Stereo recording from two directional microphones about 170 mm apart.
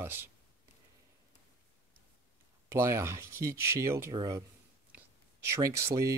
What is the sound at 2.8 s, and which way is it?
Speech, 15° right (ahead or behind).